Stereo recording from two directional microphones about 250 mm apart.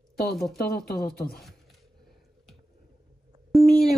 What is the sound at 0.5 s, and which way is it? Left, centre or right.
Speech, left.